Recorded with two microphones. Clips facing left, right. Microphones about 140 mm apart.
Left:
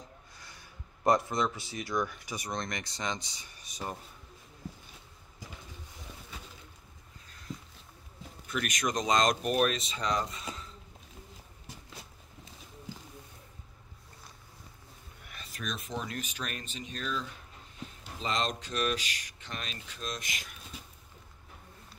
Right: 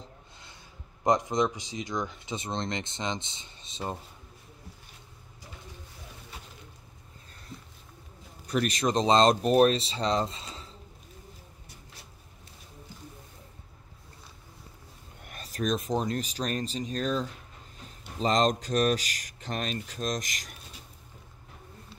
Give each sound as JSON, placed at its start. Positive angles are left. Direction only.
{"t": 0.0, "sound": "speech", "side_deg": -20}
{"t": 8.5, "sound": "speech", "side_deg": -35}
{"t": 15.2, "sound": "speech", "side_deg": -45}